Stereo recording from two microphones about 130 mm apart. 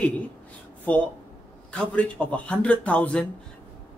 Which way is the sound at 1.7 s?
10° left (ahead or behind).